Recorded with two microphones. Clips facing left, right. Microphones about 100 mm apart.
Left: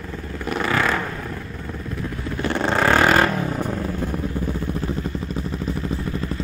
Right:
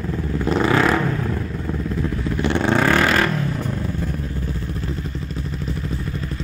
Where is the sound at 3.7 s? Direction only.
15° left (ahead or behind).